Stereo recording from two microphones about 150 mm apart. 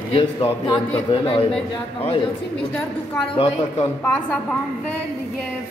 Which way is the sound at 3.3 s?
40° left (ahead or behind).